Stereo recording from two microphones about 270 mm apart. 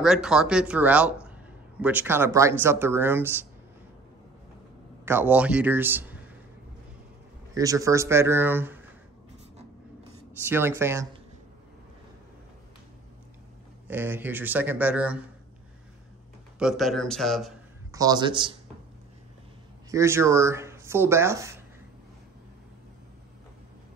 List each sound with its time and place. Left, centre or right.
0.0 s speech: centre
5.0 s speech: centre
7.5 s speech: centre
10.5 s speech: centre
13.8 s speech: centre
16.5 s speech: centre
17.9 s speech: centre
19.9 s speech: centre